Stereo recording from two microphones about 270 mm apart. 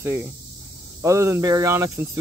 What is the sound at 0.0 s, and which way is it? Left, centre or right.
Speech, centre.